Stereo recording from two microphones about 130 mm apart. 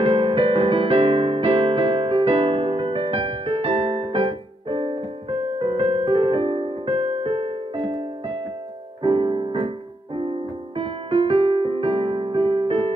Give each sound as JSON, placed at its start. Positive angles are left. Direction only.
{"t": 0.0, "sound": "electric piano", "side_deg": -40}
{"t": 9.0, "sound": "music", "side_deg": -40}